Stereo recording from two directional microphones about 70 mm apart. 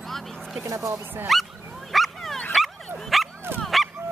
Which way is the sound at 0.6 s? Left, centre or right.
Right.